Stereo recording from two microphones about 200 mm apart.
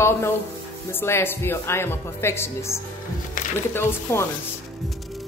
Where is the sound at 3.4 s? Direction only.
40° left (ahead or behind).